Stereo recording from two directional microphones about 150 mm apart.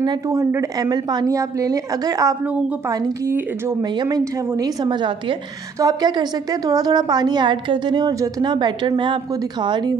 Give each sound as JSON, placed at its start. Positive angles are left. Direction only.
{"t": 0.0, "sound": "a woman's voice", "side_deg": -25}